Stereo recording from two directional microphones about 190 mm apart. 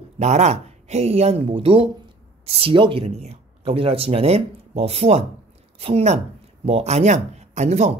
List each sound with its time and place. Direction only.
0.2 s speech: 35° right (ahead or behind)